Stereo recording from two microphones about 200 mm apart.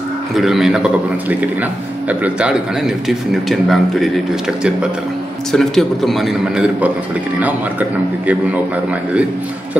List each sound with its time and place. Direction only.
0.4 s a man's voice: centre (ahead or behind)
5.5 s a man's voice: centre (ahead or behind)